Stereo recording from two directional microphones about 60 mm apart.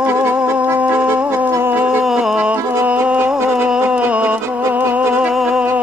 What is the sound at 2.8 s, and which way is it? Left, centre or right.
Music, right.